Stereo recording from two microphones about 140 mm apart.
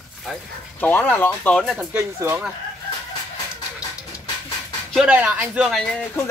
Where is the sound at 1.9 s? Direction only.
15° right (ahead or behind).